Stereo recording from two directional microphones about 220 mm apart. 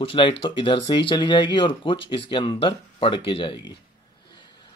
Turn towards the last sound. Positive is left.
turn(degrees=20)  # may be behind; listen again after turning